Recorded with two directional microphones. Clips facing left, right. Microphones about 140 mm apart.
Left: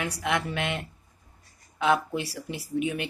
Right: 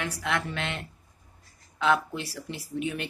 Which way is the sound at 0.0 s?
15° left (ahead or behind).